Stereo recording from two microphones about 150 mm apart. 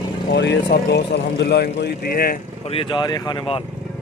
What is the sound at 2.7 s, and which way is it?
Speech, 35° left (ahead or behind).